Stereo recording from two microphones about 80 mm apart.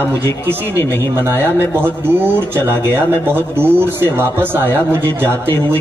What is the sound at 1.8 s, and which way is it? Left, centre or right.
A man's voice, right.